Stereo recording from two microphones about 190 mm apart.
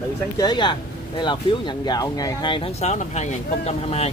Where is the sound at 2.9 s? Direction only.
35° left (ahead or behind).